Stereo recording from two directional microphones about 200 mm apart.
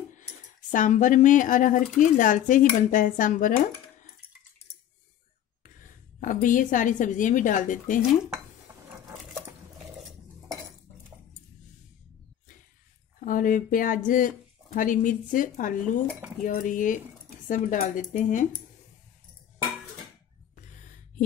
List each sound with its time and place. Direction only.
0.7 s speech: 40° left (ahead or behind)
5.6 s a woman's voice: 45° left (ahead or behind)
13.2 s speech: 40° left (ahead or behind)